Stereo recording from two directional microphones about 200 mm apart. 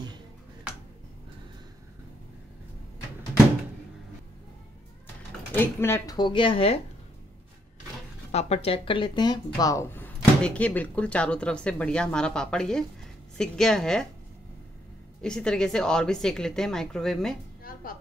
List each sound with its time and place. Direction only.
5.5 s speech: 10° left (ahead or behind); by 6.8 s 30° left (ahead or behind)
8.3 s a woman's voice: 30° left (ahead or behind); by 14.0 s 5° left (ahead or behind)
15.2 s a woman's voice: 5° left (ahead or behind)